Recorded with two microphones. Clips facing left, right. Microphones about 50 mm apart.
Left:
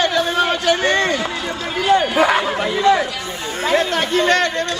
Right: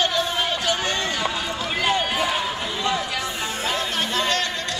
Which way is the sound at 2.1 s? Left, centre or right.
Left.